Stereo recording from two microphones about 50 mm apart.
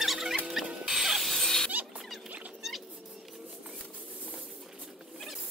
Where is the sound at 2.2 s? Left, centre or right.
Right.